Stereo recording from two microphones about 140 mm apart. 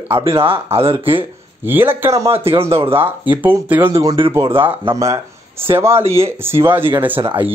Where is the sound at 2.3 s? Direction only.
45° right (ahead or behind).